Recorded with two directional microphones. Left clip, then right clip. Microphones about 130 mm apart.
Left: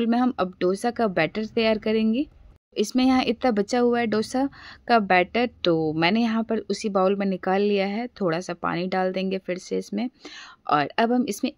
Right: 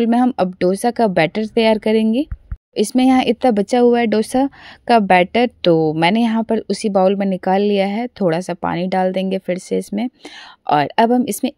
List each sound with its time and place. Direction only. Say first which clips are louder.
0.0 s speech: right 7 dB; 40° right (ahead or behind)